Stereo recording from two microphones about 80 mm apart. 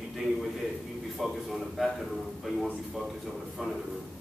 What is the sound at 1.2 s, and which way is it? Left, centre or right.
A man's voice, centre.